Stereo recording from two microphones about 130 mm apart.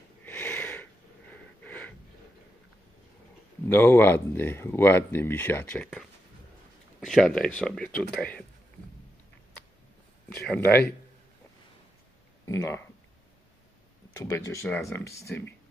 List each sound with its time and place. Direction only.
0.2 s sniff: 15° left (ahead or behind)
1.3 s wheeze: 15° left (ahead or behind)
3.6 s speech: 15° left (ahead or behind)
7.0 s speech: 5° left (ahead or behind)
10.6 s speech: 15° left (ahead or behind)
12.4 s speech: 20° left (ahead or behind)
14.1 s speech: 25° left (ahead or behind)